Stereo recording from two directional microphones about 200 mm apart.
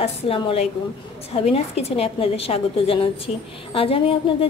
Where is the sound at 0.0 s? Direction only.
30° left (ahead or behind).